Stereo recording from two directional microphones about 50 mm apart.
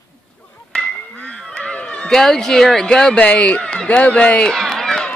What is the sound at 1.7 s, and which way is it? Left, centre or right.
Cat, left.